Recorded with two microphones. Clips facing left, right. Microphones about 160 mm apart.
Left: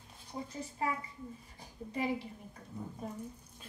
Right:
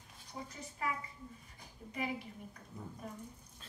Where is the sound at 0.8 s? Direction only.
30° left (ahead or behind).